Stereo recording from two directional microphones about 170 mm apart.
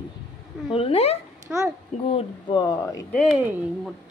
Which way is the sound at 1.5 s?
5° right (ahead or behind).